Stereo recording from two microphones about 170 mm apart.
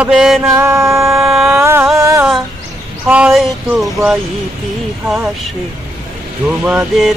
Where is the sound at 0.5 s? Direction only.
15° right (ahead or behind).